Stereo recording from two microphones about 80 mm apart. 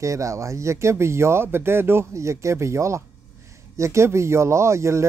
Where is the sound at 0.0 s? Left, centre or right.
Right.